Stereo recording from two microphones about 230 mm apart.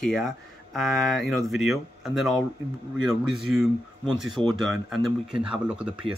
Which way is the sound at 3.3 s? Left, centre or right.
Centre.